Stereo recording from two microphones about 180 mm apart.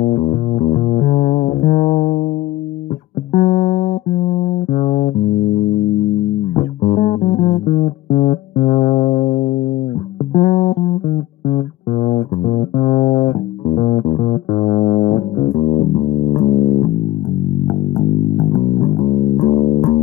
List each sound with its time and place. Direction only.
0.0 s music: 40° left (ahead or behind)
3.3 s music: 45° left (ahead or behind)
6.5 s music: 40° left (ahead or behind)
17.6 s bass guitar: 45° left (ahead or behind)